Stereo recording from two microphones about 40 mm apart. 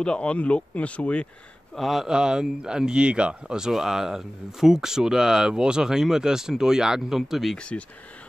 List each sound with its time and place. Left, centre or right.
0.0 s speech: left
1.8 s speech: centre
2.0 s speech: centre
3.7 s speech: centre
7.5 s speech: left